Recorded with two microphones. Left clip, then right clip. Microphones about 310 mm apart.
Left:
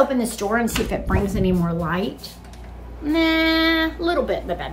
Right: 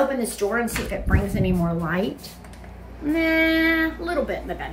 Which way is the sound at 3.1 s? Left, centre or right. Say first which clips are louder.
Left 1 dB; centre.